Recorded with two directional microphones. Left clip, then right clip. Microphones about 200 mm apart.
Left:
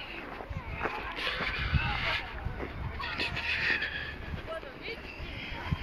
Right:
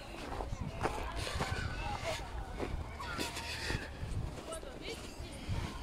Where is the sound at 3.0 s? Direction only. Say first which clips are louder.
Left 8 dB; 20° right (ahead or behind).